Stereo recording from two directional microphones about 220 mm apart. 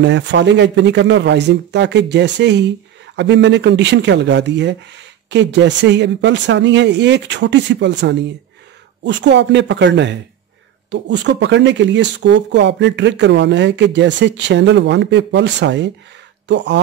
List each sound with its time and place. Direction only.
0.0 s speech: 55° right (ahead or behind)